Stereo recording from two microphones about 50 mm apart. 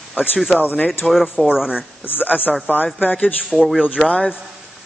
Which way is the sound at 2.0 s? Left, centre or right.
Left.